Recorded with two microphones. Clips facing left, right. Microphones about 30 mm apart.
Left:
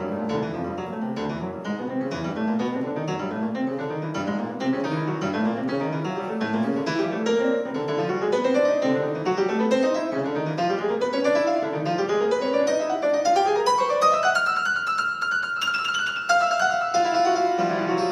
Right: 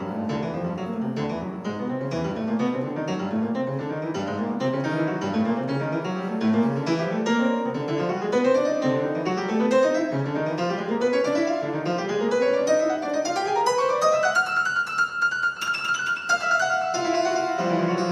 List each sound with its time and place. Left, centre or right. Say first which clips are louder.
6.4 s music: right 3 dB; centre